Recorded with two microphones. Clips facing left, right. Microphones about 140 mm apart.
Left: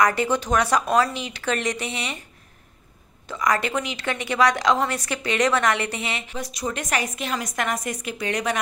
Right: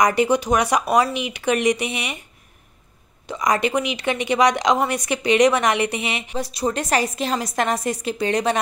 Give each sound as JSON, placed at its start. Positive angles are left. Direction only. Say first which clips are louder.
{"t": 0.0, "sound": "speech", "louder": "right 3 dB", "side_deg": -15}
{"t": 3.3, "sound": "speech", "louder": "right 3 dB", "side_deg": -20}
{"t": 6.3, "sound": "a woman's voice", "louder": "right 9 dB", "side_deg": -35}